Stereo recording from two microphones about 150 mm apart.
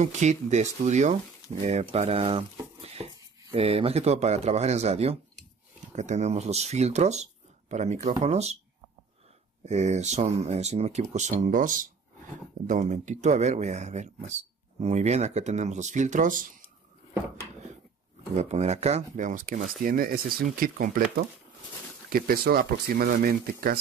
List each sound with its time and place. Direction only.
0.0 s speech: 50° right (ahead or behind)
9.7 s speech: 50° right (ahead or behind)
18.3 s speech: 45° right (ahead or behind)
19.8 s speech: 75° right (ahead or behind)
22.1 s speech: 75° right (ahead or behind)